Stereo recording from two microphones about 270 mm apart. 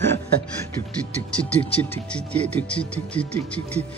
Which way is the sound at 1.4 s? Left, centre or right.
Centre.